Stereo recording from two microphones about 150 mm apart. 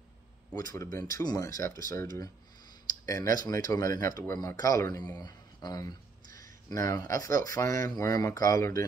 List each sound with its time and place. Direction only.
0.6 s speech: 25° left (ahead or behind)